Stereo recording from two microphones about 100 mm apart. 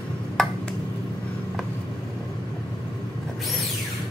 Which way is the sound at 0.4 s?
5° left (ahead or behind).